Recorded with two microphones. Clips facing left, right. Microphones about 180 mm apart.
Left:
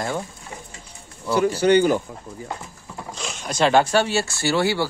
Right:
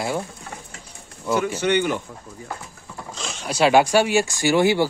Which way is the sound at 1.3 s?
35° left (ahead or behind).